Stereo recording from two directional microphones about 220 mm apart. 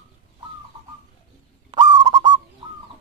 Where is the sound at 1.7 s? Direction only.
20° right (ahead or behind).